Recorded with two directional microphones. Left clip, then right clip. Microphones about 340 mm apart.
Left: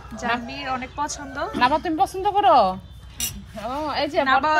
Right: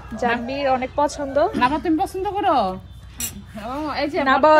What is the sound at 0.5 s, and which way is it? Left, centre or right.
Speech, centre.